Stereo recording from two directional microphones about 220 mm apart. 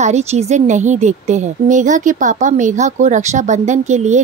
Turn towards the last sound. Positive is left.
turn(degrees=-30)  # may be behind; listen again after turning